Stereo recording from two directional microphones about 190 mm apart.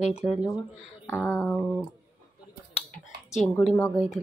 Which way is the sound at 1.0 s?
10° left (ahead or behind).